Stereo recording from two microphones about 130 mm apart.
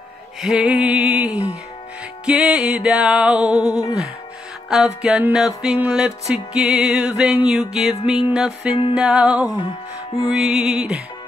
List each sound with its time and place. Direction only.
0.4 s music: 5° right (ahead or behind)
9.6 s music: 35° left (ahead or behind)
10.4 s music: 5° right (ahead or behind)